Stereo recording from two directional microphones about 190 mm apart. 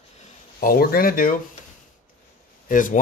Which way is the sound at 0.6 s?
50° left (ahead or behind).